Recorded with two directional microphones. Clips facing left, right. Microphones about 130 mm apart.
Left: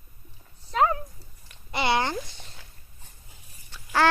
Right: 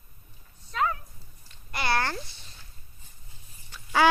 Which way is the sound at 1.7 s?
20° left (ahead or behind).